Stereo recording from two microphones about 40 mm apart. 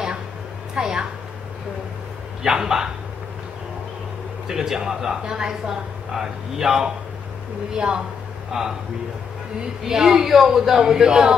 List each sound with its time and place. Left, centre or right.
0.7 s a sound: centre
2.4 s speech: centre
4.5 s speech: centre
9.8 s speech: centre